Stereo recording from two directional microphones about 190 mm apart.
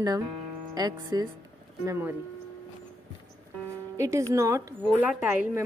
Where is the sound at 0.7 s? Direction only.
20° right (ahead or behind).